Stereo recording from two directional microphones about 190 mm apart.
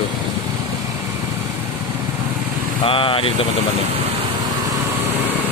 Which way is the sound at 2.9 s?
30° left (ahead or behind).